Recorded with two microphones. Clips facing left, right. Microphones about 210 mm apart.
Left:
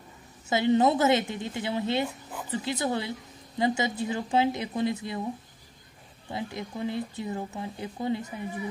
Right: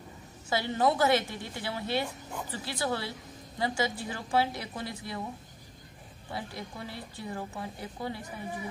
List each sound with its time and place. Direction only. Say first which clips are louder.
0.5 s speech: left 5 dB; 20° left (ahead or behind)
6.3 s speech: left 5 dB; 20° left (ahead or behind)